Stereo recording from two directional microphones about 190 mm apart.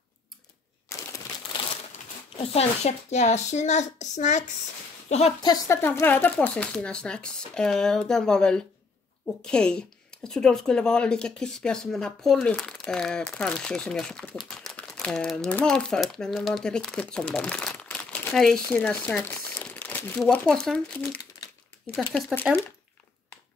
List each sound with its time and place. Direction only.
0.9 s a sound: 15° left (ahead or behind)
2.3 s speech: 30° left (ahead or behind)
5.4 s speech: 15° left (ahead or behind)